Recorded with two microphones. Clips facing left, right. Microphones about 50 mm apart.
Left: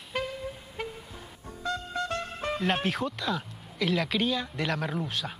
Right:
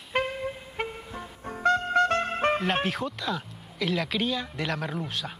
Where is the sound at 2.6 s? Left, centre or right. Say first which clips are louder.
Right 1 dB; centre.